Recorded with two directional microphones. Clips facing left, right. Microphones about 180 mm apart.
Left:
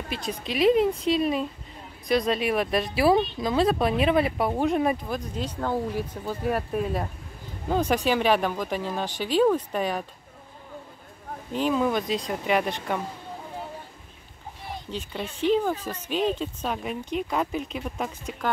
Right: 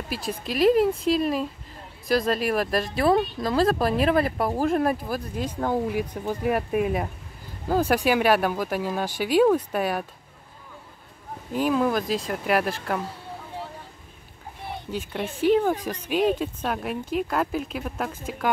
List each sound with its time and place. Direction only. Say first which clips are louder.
0.1 s a woman's voice: right 1 dB; 5° right (ahead or behind)
11.5 s a woman's voice: right 1 dB; 5° right (ahead or behind)
14.9 s a woman's voice: right 4 dB; 10° right (ahead or behind)